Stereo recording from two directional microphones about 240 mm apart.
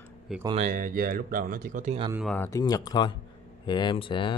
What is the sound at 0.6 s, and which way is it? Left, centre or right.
Speech, right.